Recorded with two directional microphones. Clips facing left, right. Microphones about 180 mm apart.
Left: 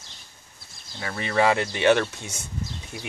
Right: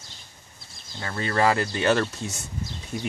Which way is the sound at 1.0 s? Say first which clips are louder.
Left 1 dB; 10° left (ahead or behind).